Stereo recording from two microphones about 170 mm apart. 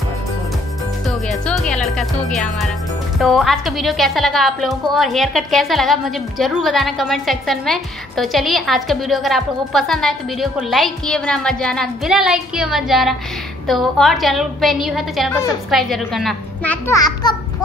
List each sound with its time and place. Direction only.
1.0 s music: centre (ahead or behind)
3.2 s a woman's voice: centre (ahead or behind)
16.8 s a child's voice: 20° left (ahead or behind)